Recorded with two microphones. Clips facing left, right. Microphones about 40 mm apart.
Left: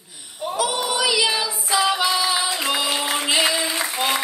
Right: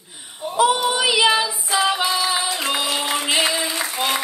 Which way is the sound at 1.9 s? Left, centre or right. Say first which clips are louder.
Even; right.